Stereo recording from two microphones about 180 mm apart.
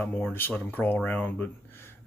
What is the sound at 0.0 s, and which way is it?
Speech, 10° left (ahead or behind).